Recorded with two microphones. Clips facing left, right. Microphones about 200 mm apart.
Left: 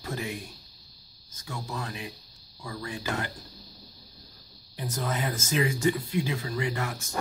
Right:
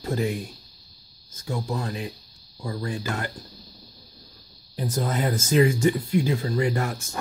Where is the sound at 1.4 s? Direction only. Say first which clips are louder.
Right 7 dB; 30° right (ahead or behind).